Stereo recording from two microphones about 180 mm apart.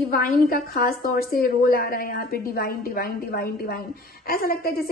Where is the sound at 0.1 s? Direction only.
55° left (ahead or behind).